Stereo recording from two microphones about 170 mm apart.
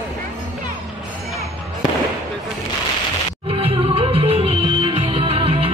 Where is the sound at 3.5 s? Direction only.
30° right (ahead or behind).